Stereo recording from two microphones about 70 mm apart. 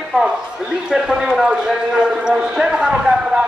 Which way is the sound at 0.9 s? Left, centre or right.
Centre.